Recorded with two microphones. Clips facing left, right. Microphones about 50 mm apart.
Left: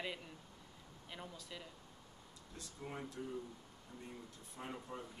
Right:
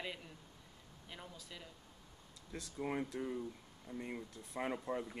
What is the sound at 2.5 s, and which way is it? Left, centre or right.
Speech, right.